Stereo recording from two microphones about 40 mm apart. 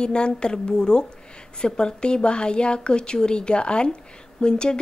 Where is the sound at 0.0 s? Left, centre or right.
Left.